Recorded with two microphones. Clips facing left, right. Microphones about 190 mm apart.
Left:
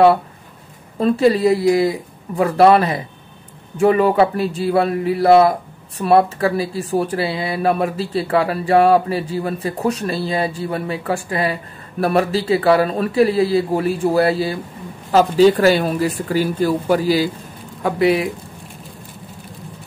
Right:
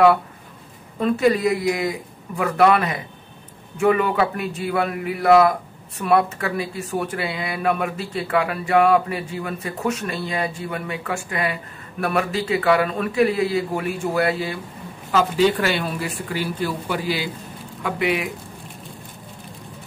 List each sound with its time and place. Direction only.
0.9 s speech: 30° left (ahead or behind)